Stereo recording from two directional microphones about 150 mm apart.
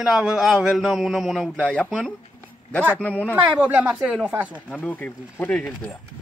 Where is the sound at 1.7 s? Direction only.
5° left (ahead or behind).